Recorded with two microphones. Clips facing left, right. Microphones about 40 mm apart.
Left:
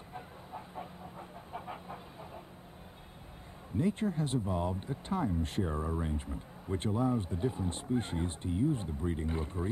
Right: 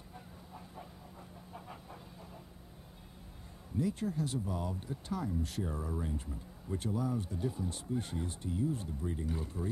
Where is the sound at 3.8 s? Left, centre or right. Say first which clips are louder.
Left 3 dB; left.